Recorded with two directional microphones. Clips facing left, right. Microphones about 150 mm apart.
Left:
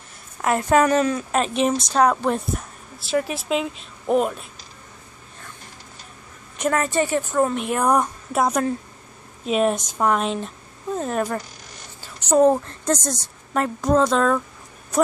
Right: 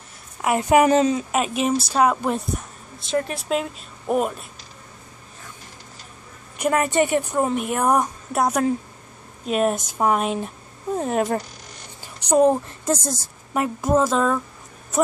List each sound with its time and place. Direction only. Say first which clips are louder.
0.4 s speech: right 1 dB; 15° right (ahead or behind)
1.3 s a woman's voice: left 1 dB; 5° right (ahead or behind)
6.6 s speech: right 2 dB; 15° right (ahead or behind)
7.6 s a woman's voice: even; 5° right (ahead or behind)
12.0 s a sound: left 1 dB; 15° right (ahead or behind)
12.8 s speech: right 1 dB; 5° right (ahead or behind)